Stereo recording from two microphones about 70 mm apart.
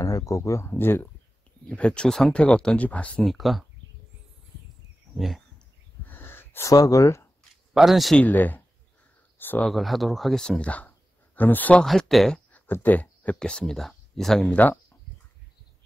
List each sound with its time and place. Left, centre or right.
0.0 s speech: left
0.7 s speech: left
1.7 s speech: centre
3.3 s speech: centre
5.1 s speech: centre
6.0 s gasp: left
6.7 s speech: left
7.7 s speech: centre
8.2 s speech: left
9.7 s speech: centre
11.3 s speech: left
11.8 s speech: centre
12.8 s speech: left; by 14.5 s centre
14.5 s speech: left